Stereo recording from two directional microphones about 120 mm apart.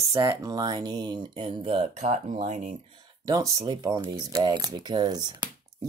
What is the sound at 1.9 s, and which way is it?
Speech, 75° right (ahead or behind).